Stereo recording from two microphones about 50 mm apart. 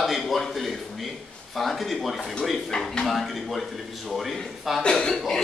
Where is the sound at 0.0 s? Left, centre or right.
Centre.